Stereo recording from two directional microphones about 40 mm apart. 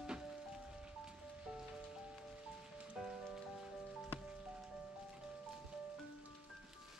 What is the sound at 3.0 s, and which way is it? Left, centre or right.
Rain on surface, centre.